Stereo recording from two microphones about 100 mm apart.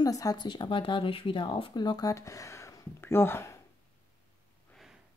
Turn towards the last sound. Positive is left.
turn(degrees=25)  # may be behind; listen again after turning